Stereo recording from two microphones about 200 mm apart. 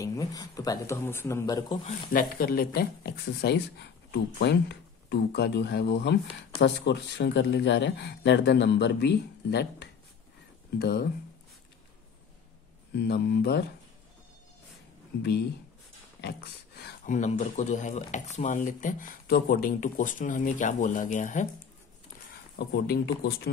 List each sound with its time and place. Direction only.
0.0 s speech: 15° left (ahead or behind)
1.9 s speech: 45° left (ahead or behind)
12.9 s speech: 55° left (ahead or behind)
16.2 s speech: 55° left (ahead or behind)
17.0 s speech: 35° left (ahead or behind)
22.6 s speech: 55° left (ahead or behind)